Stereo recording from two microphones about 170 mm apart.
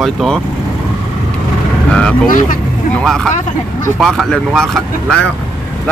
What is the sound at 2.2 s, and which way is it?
Speech, 50° left (ahead or behind).